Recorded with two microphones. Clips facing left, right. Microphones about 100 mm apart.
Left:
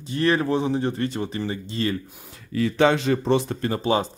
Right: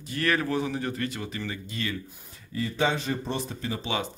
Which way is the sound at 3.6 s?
45° left (ahead or behind).